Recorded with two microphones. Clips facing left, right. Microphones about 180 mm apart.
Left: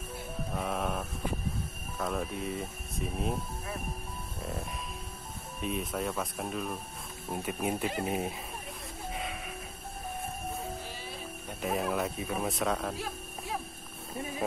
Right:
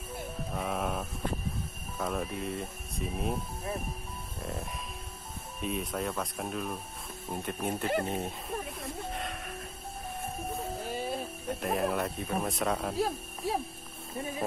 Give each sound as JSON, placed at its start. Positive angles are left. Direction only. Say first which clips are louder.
{"t": 0.5, "sound": "mantra", "louder": "even", "side_deg": 0}
{"t": 2.0, "sound": "speech", "louder": "even", "side_deg": 0}
{"t": 4.4, "sound": "music", "louder": "even", "side_deg": 0}
{"t": 5.6, "sound": "speech", "louder": "even", "side_deg": 0}
{"t": 9.1, "sound": "music", "louder": "even", "side_deg": 0}
{"t": 10.9, "sound": "music", "louder": "right 8 dB", "side_deg": -50}
{"t": 11.6, "sound": "speech", "louder": "even", "side_deg": 0}